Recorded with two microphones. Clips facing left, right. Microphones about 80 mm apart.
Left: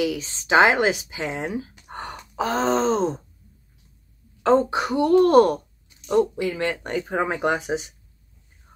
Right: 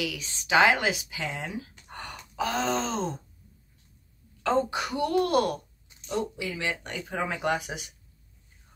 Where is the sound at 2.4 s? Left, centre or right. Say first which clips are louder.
Left 5 dB; left.